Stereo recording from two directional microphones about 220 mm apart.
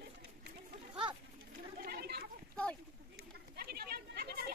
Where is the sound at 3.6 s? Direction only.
45° right (ahead or behind).